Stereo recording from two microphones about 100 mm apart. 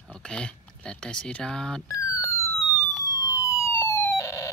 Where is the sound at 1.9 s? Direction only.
30° left (ahead or behind).